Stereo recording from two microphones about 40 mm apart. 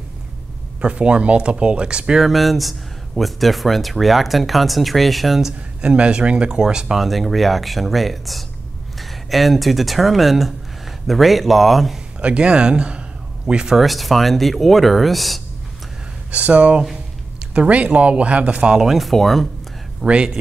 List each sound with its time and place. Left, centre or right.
0.7 s speech: right
2.1 s speech: centre
5.8 s speech: right
7.0 s speech: centre
12.2 s speech: right
13.7 s speech: centre
16.3 s speech: right
18.8 s speech: centre
19.0 s speech: centre
20.0 s speech: centre